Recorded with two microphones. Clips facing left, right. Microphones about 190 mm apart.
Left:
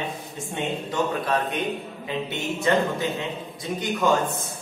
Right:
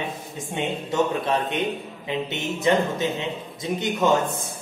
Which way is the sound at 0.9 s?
25° right (ahead or behind).